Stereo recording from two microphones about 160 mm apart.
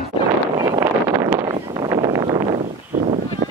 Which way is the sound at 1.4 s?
25° right (ahead or behind).